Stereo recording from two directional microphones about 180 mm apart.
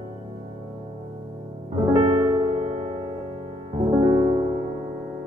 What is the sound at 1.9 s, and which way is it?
Music, 25° right (ahead or behind).